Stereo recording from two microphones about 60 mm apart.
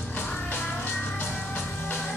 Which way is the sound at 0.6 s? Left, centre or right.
Left.